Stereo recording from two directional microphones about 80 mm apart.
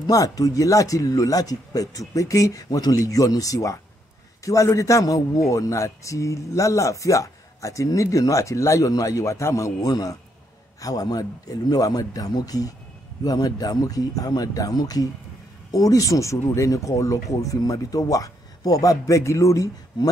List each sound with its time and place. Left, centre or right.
0.1 s a man's voice: left
9.8 s a man's voice: left